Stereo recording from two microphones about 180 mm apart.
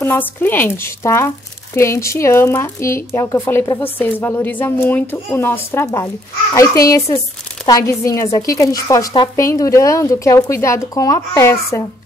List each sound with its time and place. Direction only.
0.0 s speech: 10° left (ahead or behind)